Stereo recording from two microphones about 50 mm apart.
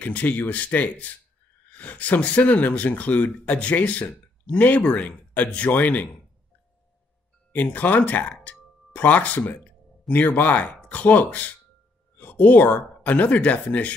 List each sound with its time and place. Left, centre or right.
0.0 s speech: left
7.5 s speech: left